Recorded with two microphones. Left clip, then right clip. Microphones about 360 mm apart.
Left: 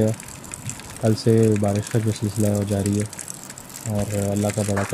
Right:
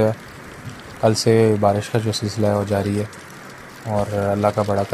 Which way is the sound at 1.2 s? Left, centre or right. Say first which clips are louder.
Right 3 dB; right.